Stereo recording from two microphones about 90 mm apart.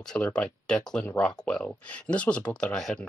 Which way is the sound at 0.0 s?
10° left (ahead or behind).